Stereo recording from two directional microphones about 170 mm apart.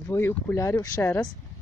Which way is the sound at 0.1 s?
15° left (ahead or behind).